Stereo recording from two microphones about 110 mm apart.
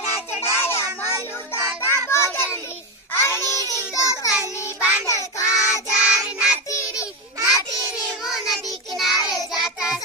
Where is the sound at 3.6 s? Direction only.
30° left (ahead or behind).